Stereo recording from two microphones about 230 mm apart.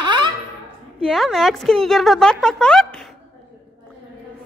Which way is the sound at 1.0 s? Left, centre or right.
Centre.